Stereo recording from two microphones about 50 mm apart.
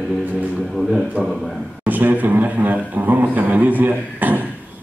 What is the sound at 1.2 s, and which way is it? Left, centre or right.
Speech, right.